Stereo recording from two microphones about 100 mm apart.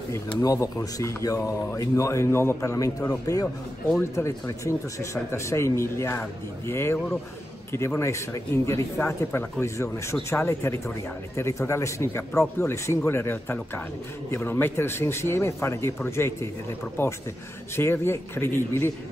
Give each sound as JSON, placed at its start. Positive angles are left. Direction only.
{"t": 0.4, "sound": "a man's voice", "side_deg": 35}